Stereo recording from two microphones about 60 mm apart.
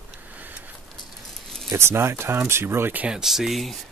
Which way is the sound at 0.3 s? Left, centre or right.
Right.